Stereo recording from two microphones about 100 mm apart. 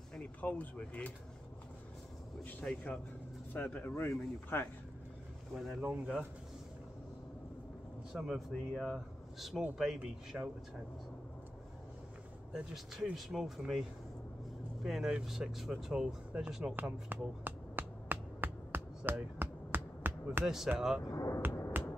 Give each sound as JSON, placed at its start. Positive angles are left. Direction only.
{"t": 0.4, "sound": "speech", "side_deg": 15}
{"t": 2.4, "sound": "speech", "side_deg": 10}
{"t": 5.5, "sound": "speech", "side_deg": -5}
{"t": 8.1, "sound": "speech", "side_deg": 0}
{"t": 10.3, "sound": "speech", "side_deg": -15}
{"t": 12.5, "sound": "speech", "side_deg": -5}
{"t": 14.8, "sound": "speech", "side_deg": -5}
{"t": 16.7, "sound": "finger snapping", "side_deg": -20}
{"t": 20.4, "sound": "speech", "side_deg": -5}
{"t": 21.1, "sound": "speech", "side_deg": 35}
{"t": 21.7, "sound": "finger snapping", "side_deg": -20}